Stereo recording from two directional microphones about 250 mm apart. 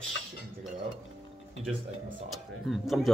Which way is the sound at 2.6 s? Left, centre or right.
Centre.